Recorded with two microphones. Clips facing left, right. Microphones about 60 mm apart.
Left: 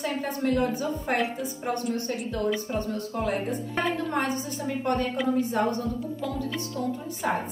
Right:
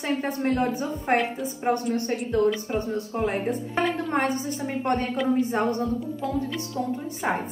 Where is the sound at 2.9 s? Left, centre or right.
Right.